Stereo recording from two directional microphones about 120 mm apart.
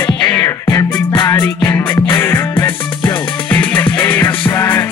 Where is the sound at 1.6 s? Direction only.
15° left (ahead or behind).